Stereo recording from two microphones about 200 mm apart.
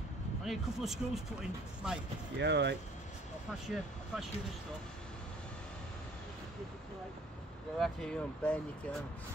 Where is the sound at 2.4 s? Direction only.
60° right (ahead or behind).